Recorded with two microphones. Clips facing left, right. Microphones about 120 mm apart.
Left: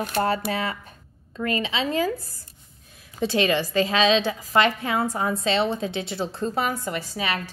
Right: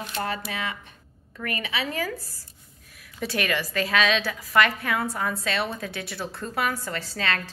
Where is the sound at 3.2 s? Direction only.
25° left (ahead or behind).